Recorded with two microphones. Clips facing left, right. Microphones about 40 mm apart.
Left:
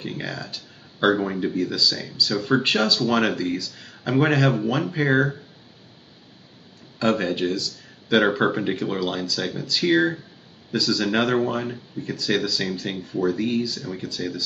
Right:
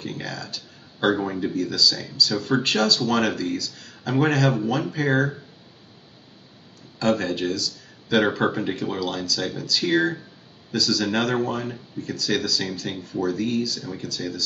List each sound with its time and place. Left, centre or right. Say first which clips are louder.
0.0 s speech: left 1 dB; centre
7.1 s a man's voice: left 1 dB; centre